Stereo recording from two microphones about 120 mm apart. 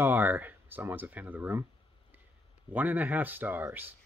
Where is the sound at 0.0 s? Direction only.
15° right (ahead or behind).